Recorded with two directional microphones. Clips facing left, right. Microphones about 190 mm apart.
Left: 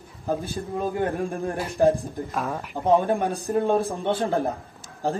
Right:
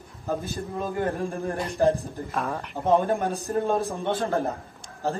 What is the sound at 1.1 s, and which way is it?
Speech, 15° left (ahead or behind).